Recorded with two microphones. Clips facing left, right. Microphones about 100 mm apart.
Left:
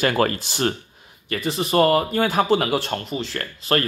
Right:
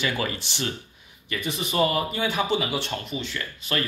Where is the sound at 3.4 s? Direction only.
50° left (ahead or behind).